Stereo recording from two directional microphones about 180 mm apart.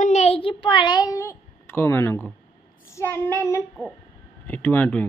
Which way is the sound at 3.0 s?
15° left (ahead or behind).